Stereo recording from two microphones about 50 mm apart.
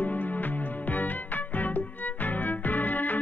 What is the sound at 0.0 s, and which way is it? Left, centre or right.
Music, left.